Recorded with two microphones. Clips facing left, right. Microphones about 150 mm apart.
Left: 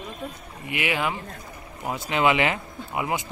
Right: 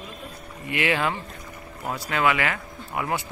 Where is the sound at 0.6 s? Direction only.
15° left (ahead or behind).